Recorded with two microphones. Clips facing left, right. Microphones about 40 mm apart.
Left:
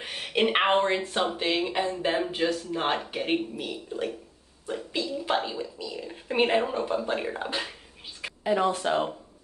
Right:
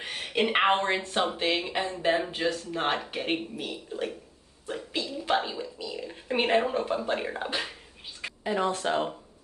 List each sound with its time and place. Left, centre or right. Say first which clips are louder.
0.3 s speech: left 2 dB; left
0.8 s a woman's voice: left 1 dB; centre